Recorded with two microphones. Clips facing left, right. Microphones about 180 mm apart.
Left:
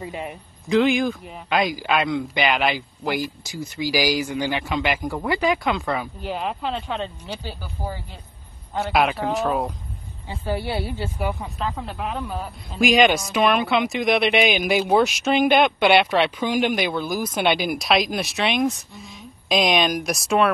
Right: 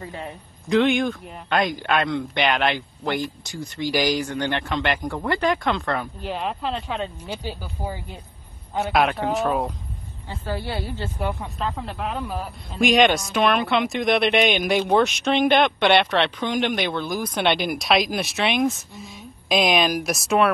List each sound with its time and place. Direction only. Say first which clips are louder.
0.0 s a man's voice: left 3 dB; 15° left (ahead or behind)
0.7 s speech: even; centre (ahead or behind)
7.4 s speech: right 1 dB; 15° right (ahead or behind)
8.7 s speech: even; centre (ahead or behind)
10.2 s speech: left 3 dB; 15° left (ahead or behind); by 20.4 s centre (ahead or behind)